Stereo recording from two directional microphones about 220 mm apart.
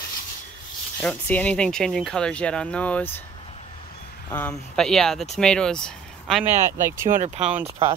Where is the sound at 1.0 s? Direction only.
5° left (ahead or behind).